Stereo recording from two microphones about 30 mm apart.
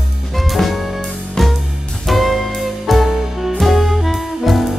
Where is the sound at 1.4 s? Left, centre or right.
Centre.